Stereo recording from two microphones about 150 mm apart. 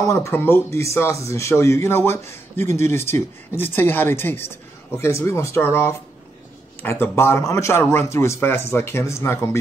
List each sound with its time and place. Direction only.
0.1 s speech: 15° left (ahead or behind)